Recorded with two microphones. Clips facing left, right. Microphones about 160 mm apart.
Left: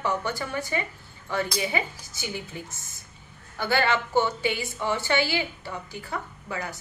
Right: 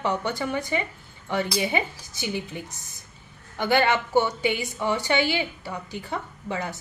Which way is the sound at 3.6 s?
15° right (ahead or behind).